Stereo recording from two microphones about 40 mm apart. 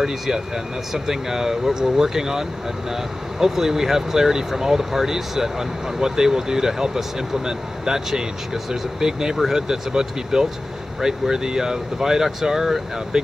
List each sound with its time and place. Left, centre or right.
0.9 s speech: centre